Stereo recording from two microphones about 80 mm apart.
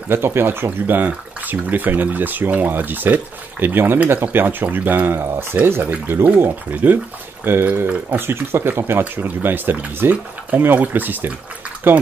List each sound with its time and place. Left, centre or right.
0.1 s speech: right